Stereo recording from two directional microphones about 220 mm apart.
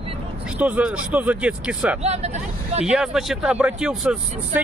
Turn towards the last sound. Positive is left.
turn(degrees=-5)  # may be behind; listen again after turning